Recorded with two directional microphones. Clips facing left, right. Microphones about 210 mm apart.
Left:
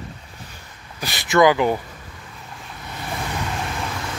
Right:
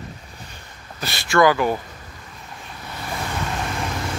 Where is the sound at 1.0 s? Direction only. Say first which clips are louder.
Left 1 dB; 15° left (ahead or behind).